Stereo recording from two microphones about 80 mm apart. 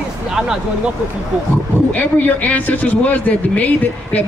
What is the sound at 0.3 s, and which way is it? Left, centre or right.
Speech, centre.